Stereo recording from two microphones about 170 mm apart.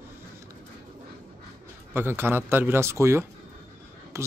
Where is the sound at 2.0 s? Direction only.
15° right (ahead or behind).